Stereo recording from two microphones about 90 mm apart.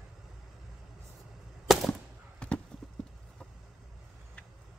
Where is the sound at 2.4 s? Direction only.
10° left (ahead or behind).